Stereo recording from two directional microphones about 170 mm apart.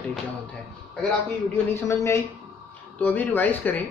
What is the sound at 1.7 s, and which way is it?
Speech, 15° left (ahead or behind).